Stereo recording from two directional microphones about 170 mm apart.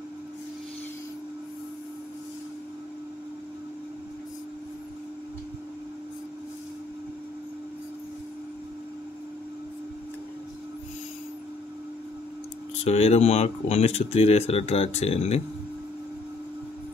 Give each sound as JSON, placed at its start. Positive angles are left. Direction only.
{"t": 12.8, "sound": "speech", "side_deg": 40}